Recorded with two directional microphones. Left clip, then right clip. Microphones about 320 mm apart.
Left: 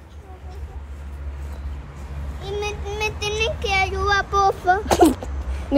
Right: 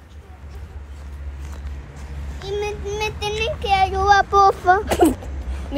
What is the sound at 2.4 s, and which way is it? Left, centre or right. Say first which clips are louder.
Speech: right 2 dB; centre.